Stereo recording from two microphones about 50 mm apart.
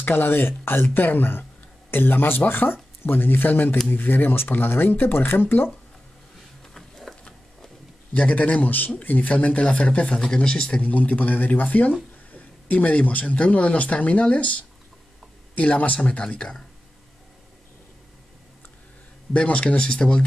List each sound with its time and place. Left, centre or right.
0.0 s speech: left
6.7 s a sound: centre
8.1 s speech: left
10.8 s speech: left
15.5 s speech: left
19.3 s speech: left